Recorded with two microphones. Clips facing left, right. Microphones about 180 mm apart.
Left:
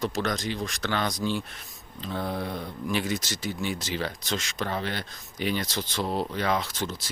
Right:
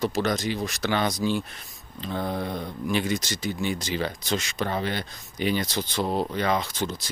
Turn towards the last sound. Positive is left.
turn(degrees=0)  # may be behind; listen again after turning